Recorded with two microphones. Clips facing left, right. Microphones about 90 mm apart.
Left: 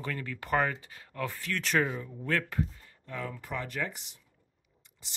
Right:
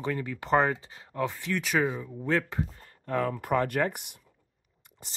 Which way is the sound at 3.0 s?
55° right (ahead or behind).